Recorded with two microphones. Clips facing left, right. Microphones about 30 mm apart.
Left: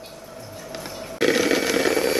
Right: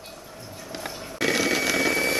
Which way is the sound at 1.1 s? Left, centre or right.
Centre.